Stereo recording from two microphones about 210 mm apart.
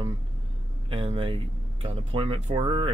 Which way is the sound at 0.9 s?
25° right (ahead or behind).